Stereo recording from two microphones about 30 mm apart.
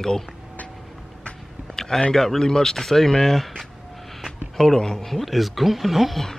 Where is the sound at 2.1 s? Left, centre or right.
Centre.